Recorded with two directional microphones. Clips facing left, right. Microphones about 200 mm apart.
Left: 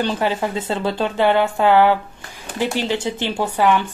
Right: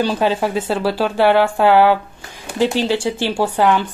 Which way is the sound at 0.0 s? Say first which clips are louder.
Right 3 dB; 10° right (ahead or behind).